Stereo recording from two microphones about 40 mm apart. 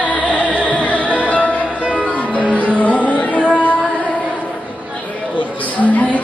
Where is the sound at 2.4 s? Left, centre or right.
Right.